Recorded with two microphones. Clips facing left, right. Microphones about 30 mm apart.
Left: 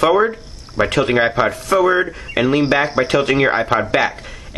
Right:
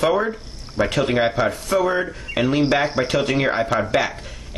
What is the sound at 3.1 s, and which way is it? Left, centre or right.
Speech, left.